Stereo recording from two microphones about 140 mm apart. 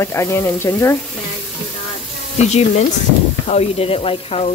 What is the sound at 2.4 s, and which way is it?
Speech, 50° left (ahead or behind).